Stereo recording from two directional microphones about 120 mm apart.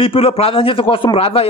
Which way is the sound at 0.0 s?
50° left (ahead or behind).